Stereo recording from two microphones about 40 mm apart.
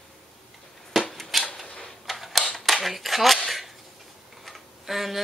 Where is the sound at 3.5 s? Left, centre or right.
Centre.